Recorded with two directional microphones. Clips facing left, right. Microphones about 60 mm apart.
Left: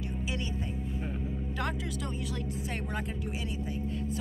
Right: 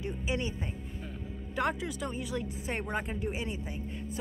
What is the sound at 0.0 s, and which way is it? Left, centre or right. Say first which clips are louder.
Music: right 2 dB; right.